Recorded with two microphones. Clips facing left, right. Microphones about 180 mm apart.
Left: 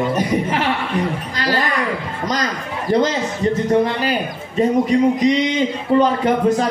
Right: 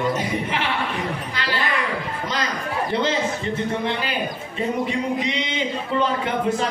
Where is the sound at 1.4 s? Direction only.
40° left (ahead or behind).